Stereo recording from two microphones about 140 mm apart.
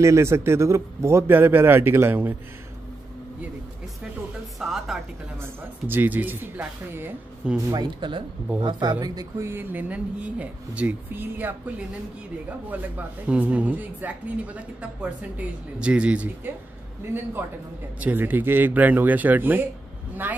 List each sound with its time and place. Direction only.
0.0 s speech: 20° right (ahead or behind)
4.6 s music: centre (ahead or behind)
5.4 s speech: 15° right (ahead or behind)
7.7 s speech: 30° right (ahead or behind); by 16.5 s 10° right (ahead or behind)
18.0 s speech: 15° right (ahead or behind)